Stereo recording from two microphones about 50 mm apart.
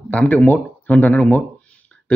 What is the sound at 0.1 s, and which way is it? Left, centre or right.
Speech, left.